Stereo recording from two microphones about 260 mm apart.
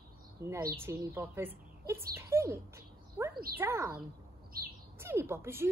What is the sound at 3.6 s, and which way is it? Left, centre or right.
Speech, centre.